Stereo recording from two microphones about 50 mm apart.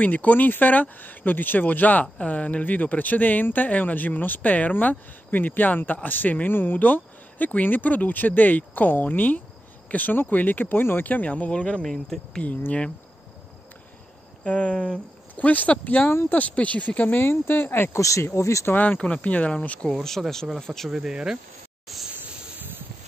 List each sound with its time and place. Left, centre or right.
0.0 s speech: left
11.1 s speech: left
11.8 s speech: centre
12.4 s speech: left
14.4 s speech: left
17.2 s speech: left
17.9 s speech: left
18.7 s speech: left
18.9 s speech: left
19.9 s speech: centre
20.9 s speech: centre